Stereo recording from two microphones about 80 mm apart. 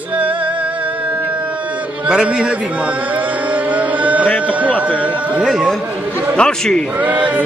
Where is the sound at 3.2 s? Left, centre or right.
Centre.